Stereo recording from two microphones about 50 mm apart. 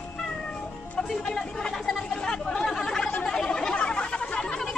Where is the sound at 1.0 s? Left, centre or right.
Centre.